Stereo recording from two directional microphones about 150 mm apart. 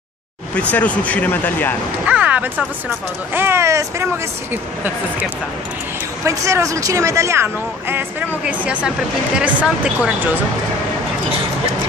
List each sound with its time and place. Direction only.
0.6 s speech: 10° left (ahead or behind)
2.0 s a sound: 10° right (ahead or behind)
3.3 s speech: 15° right (ahead or behind)
6.2 s speech: 20° right (ahead or behind)